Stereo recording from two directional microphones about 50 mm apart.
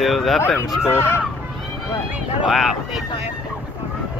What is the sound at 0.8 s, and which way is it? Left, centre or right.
Speech, left.